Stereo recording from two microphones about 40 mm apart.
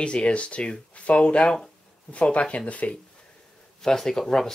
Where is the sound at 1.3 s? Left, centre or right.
Centre.